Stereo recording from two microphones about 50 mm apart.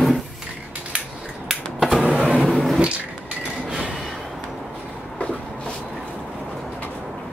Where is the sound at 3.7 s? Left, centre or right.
Centre.